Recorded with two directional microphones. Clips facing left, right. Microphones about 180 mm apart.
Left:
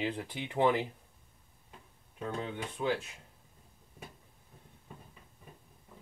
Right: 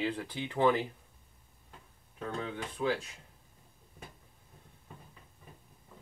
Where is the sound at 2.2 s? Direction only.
20° left (ahead or behind).